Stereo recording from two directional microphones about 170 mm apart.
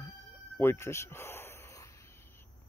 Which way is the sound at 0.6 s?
15° left (ahead or behind).